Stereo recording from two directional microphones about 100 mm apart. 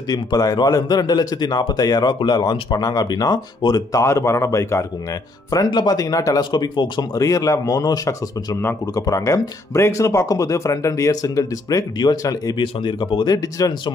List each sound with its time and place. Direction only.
0.1 s speech: 40° left (ahead or behind)
4.0 s speech: 30° left (ahead or behind)
5.5 s speech: 40° left (ahead or behind)